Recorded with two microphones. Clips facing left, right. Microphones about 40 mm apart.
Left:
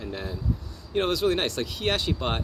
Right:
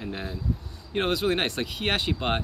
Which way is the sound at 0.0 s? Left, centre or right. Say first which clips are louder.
Even; centre.